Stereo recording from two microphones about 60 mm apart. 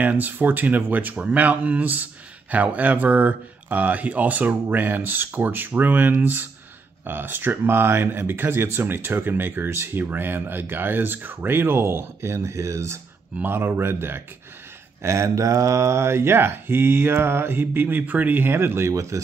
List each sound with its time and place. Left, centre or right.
0.0 s speech: right
13.4 s speech: right
15.0 s speech: right